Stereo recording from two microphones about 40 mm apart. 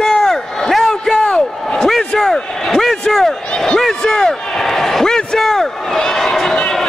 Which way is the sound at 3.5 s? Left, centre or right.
Centre.